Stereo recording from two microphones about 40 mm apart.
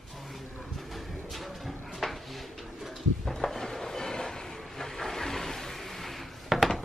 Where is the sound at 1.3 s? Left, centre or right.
Centre.